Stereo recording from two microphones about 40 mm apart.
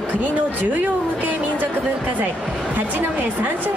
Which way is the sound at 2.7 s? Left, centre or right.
Right.